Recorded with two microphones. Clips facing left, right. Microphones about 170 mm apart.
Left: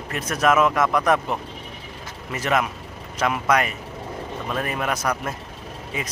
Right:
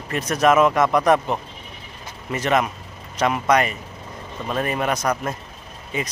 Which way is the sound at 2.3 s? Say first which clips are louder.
Right 2 dB; 5° left (ahead or behind).